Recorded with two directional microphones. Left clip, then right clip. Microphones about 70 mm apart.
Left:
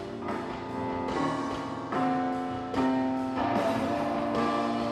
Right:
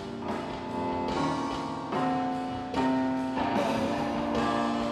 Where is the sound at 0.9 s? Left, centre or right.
Right.